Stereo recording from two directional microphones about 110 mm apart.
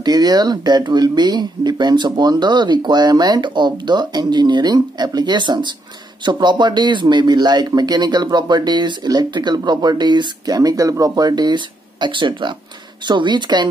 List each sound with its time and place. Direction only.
0.0 s speech: 40° right (ahead or behind)